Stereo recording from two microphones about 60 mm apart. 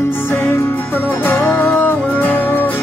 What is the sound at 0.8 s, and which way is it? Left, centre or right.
Music, left.